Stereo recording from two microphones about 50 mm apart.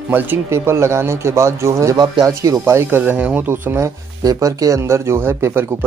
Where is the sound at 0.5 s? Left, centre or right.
Right.